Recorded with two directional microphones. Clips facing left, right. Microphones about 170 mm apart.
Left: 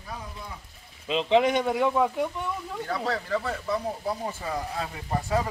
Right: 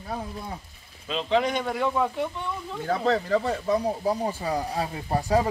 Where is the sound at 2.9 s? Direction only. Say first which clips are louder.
Right 6 dB; 25° right (ahead or behind).